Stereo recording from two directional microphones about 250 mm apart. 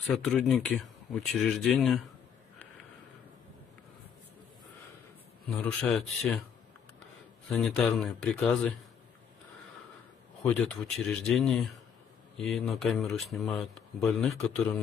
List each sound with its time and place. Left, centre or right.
0.0 s speech: centre
5.5 s speech: centre
7.4 s speech: centre
10.4 s speech: centre